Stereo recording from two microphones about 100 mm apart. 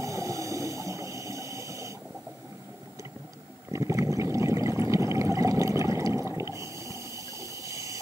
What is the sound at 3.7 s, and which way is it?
Water, 30° right (ahead or behind).